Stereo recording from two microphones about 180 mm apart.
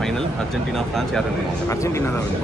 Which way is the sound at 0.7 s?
Centre (ahead or behind).